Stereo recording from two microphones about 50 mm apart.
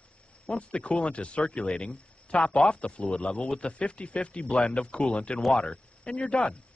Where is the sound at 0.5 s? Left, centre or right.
Left.